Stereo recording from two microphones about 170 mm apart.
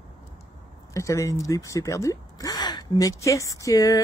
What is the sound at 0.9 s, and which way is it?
Speech, 15° left (ahead or behind).